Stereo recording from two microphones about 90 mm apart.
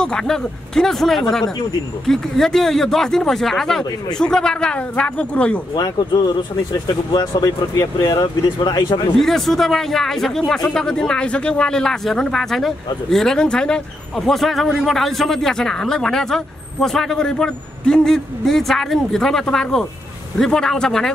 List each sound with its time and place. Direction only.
0.0 s a man's voice: 10° left (ahead or behind)
5.8 s speech: 55° left (ahead or behind)
8.5 s speech: 65° left (ahead or behind)
9.1 s a man's voice: 5° left (ahead or behind)